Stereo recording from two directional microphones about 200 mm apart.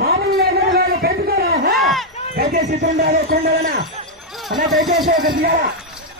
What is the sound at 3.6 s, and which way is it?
Speech, 50° right (ahead or behind).